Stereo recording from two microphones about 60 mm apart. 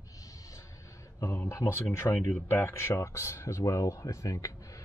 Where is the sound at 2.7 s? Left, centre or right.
Left.